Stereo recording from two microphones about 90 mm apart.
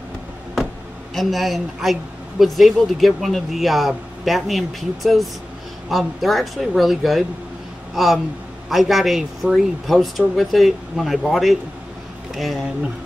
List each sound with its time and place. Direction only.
1.1 s speech: centre (ahead or behind)